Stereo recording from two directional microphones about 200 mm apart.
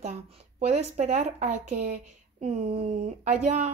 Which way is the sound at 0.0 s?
35° right (ahead or behind).